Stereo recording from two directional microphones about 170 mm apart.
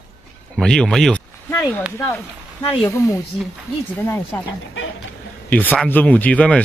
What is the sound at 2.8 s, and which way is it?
Speech, 15° left (ahead or behind).